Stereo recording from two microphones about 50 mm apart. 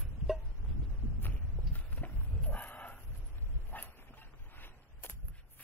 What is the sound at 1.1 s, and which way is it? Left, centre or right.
Horse, left.